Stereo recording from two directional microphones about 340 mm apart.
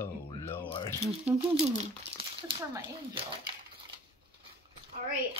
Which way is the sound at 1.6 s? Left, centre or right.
Centre.